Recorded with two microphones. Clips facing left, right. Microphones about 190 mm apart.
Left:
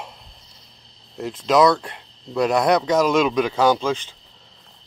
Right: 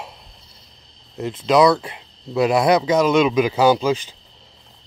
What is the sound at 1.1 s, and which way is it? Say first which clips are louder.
Speech: right 2 dB; centre (ahead or behind).